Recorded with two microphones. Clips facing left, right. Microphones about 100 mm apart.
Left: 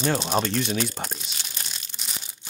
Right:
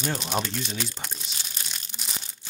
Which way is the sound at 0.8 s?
45° left (ahead or behind).